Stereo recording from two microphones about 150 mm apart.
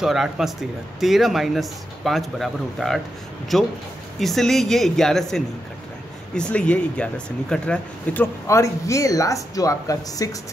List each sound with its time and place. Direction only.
0.0 s speech: centre (ahead or behind); by 10.3 s 20° left (ahead or behind)